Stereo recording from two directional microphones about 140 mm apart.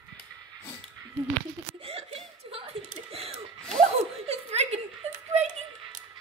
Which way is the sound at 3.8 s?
50° right (ahead or behind).